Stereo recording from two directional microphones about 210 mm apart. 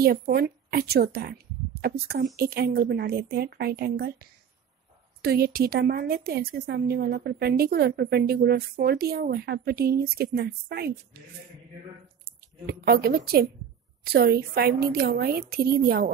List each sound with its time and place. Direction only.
0.0 s speech: 45° right (ahead or behind)
12.3 s speech: 45° right (ahead or behind)